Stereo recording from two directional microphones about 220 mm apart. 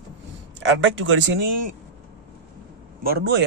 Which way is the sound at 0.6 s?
60° right (ahead or behind).